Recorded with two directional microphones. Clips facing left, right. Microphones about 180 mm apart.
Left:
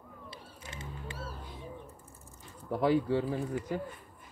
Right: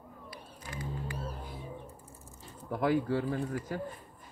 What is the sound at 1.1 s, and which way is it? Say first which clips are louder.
Music: right 3 dB; 20° right (ahead or behind).